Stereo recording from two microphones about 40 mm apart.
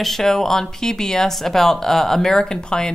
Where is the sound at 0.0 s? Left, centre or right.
Centre.